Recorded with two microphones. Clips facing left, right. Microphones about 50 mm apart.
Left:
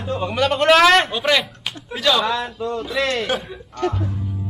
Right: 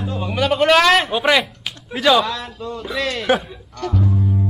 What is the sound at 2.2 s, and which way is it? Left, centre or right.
Speech, centre.